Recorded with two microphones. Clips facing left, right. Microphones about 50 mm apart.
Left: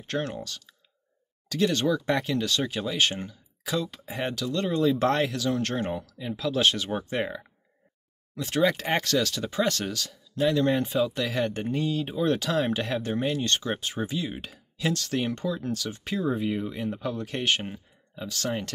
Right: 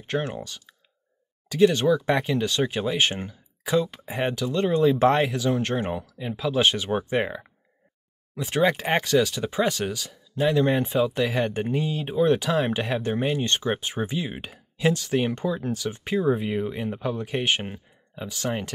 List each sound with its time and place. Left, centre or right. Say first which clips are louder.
0.0 s speech: right 2 dB; centre